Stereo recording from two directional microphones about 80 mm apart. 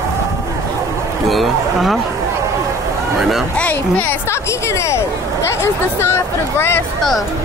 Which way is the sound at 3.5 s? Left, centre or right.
Centre.